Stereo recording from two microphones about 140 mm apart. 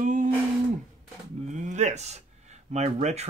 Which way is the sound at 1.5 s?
60° right (ahead or behind).